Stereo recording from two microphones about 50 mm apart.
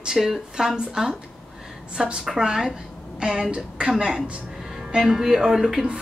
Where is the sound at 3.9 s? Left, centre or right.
Centre.